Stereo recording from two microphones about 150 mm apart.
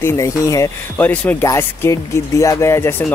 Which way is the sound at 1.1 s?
10° left (ahead or behind).